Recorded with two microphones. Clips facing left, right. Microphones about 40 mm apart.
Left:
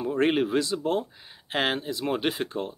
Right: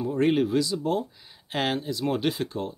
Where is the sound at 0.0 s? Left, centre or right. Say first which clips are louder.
Right 1 dB; left.